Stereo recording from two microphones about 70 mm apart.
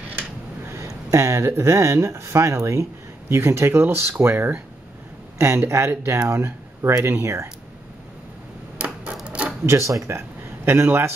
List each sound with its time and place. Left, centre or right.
0.7 s speech: right
8.7 s a sound: right
9.7 s speech: right
10.0 s a man's voice: right